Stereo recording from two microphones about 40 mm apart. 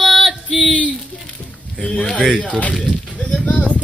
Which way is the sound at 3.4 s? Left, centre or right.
Left.